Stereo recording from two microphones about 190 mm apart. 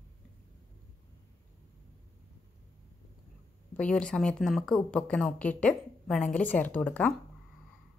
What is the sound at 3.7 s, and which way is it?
Speech, 5° left (ahead or behind).